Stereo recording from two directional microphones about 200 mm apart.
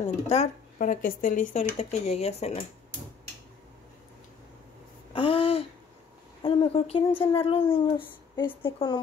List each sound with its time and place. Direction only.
0.0 s speech: 35° left (ahead or behind)
5.1 s a sound: 25° left (ahead or behind)
6.4 s speech: 25° left (ahead or behind)